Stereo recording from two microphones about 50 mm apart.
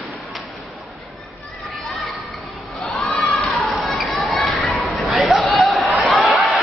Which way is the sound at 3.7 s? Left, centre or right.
Centre.